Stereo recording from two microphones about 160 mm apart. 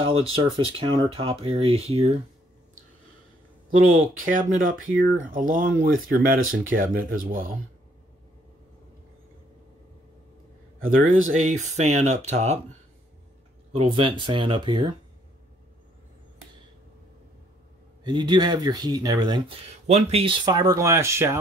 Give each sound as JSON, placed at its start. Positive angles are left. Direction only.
{"t": 0.0, "sound": "speech", "side_deg": -35}
{"t": 3.7, "sound": "speech", "side_deg": -55}
{"t": 10.9, "sound": "speech", "side_deg": -55}
{"t": 13.7, "sound": "speech", "side_deg": -35}
{"t": 18.0, "sound": "speech", "side_deg": -30}
{"t": 19.9, "sound": "speech", "side_deg": -40}
{"t": 20.4, "sound": "speech", "side_deg": -20}